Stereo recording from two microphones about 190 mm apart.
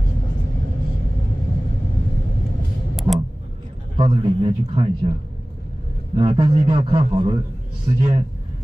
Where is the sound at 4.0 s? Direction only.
25° right (ahead or behind).